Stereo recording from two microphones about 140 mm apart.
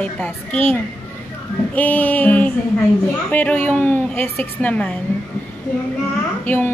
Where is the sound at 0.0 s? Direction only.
10° left (ahead or behind).